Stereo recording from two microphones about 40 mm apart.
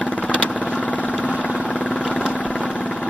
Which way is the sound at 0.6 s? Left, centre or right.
Left.